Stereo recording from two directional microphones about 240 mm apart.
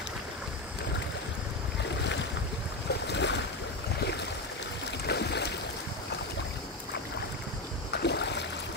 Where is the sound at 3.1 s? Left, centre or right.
Left.